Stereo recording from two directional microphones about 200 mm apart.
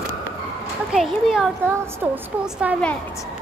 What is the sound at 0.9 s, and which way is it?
Child singing, centre (ahead or behind).